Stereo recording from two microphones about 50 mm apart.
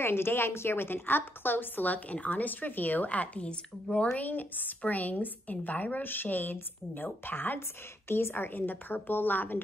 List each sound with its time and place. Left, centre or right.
0.0 s a woman's voice: left
4.2 s a woman's voice: left
8.1 s a woman's voice: left